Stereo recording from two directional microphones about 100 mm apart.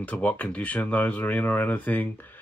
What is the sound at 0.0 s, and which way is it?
Speech, 15° left (ahead or behind).